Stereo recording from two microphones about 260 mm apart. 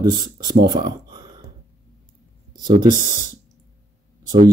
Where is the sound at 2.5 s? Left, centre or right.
Centre.